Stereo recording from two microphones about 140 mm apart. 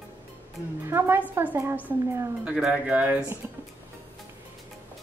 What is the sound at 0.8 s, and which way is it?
A woman's voice, 20° right (ahead or behind).